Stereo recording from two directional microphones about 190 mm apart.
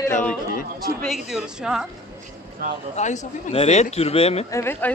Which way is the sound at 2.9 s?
40° left (ahead or behind).